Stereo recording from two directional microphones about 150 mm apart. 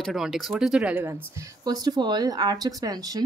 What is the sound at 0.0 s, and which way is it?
Speech, centre (ahead or behind).